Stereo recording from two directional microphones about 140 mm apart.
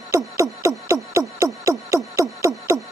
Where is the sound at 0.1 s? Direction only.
20° right (ahead or behind).